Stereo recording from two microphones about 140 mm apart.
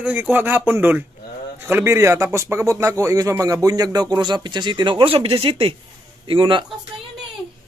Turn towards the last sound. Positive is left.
turn(degrees=-35)  # may be behind; listen again after turning